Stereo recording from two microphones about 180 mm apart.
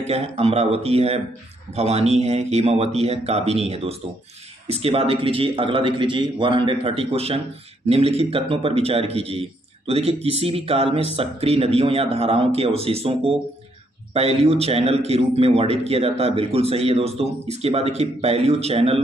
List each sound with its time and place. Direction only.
0.0 s a man's voice: 35° right (ahead or behind)